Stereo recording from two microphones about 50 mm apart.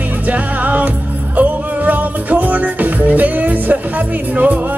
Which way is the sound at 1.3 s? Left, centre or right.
Right.